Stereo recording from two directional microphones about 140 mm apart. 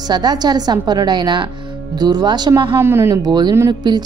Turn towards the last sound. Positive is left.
turn(degrees=-30)  # may be behind; listen again after turning